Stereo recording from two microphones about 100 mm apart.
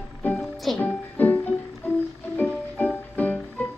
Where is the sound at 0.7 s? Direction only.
15° left (ahead or behind).